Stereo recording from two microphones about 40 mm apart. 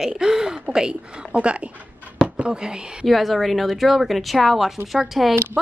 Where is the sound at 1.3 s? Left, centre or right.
Right.